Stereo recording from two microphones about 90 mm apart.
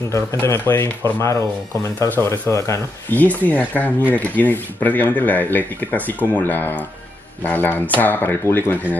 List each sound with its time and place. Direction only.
0.1 s speech: 30° left (ahead or behind)
2.0 s speech: 20° left (ahead or behind)
2.5 s speech: 35° left (ahead or behind)
3.1 s speech: 20° left (ahead or behind)